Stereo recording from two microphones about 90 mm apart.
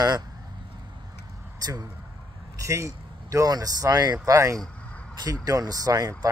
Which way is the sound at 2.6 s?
35° right (ahead or behind).